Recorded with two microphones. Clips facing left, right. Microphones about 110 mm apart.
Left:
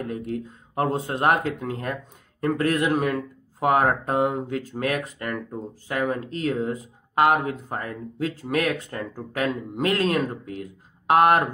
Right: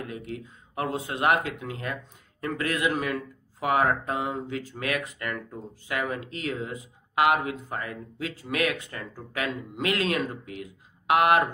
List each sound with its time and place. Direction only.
0.0 s a man's voice: 45° left (ahead or behind)
4.1 s speech: 55° left (ahead or behind); by 11.4 s 40° left (ahead or behind)